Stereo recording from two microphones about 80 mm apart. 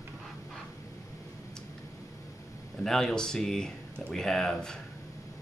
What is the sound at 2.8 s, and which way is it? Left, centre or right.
Speech, centre.